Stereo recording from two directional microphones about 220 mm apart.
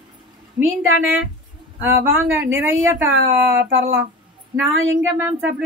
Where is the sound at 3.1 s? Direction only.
45° right (ahead or behind).